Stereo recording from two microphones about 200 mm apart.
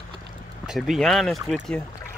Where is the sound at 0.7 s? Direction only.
Centre (ahead or behind).